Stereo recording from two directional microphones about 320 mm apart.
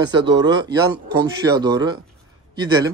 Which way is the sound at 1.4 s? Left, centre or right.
Centre.